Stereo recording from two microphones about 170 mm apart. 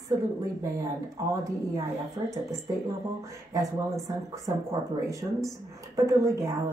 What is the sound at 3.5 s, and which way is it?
Speech, 20° right (ahead or behind).